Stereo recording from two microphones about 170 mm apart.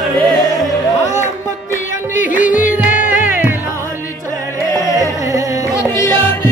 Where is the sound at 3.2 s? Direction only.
10° right (ahead or behind).